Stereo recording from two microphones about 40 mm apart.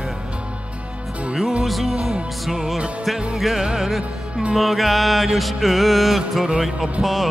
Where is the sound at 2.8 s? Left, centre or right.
Right.